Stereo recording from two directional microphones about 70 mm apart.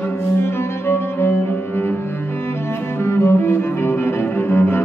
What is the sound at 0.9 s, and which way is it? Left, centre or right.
Cello, left.